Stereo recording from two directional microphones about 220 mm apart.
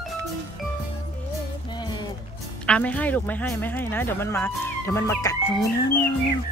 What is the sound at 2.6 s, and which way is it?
Speech, 5° left (ahead or behind).